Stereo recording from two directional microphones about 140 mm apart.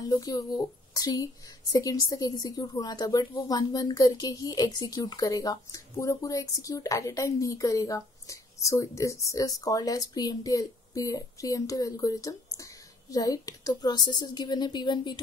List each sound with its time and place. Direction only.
0.0 s speech: 25° left (ahead or behind)